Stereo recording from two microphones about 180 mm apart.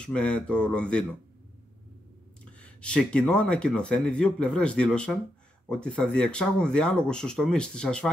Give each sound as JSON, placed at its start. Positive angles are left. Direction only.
{"t": 0.0, "sound": "speech", "side_deg": 5}
{"t": 2.4, "sound": "speech", "side_deg": 5}